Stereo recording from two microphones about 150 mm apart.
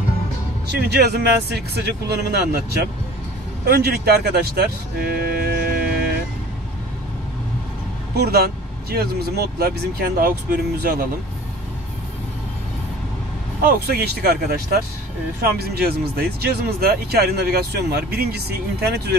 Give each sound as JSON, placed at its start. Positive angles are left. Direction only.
{"t": 0.7, "sound": "speech", "side_deg": -90}
{"t": 8.2, "sound": "speech", "side_deg": -90}
{"t": 13.6, "sound": "speech", "side_deg": -85}